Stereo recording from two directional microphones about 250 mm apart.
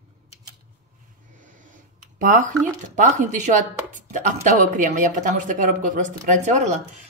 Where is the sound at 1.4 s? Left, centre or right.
Right.